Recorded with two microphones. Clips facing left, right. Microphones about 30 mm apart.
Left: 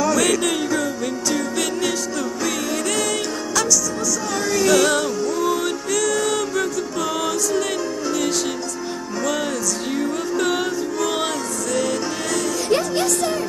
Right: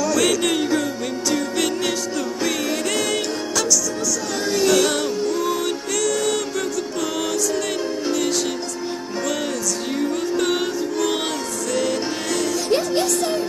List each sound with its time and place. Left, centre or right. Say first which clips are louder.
0.4 s music: right 1 dB; centre
4.6 s music: left 1 dB; centre
8.1 s music: even; centre
9.9 s music: right 1 dB; centre
12.6 s music: left 1 dB; centre